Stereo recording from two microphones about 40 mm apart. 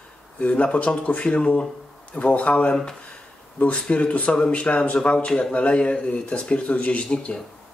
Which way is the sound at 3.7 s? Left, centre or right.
Left.